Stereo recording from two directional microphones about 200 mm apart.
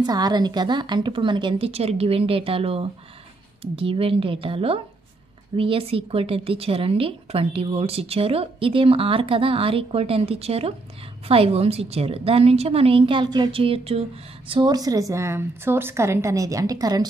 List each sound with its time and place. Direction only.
0.0 s a woman's voice: 20° right (ahead or behind)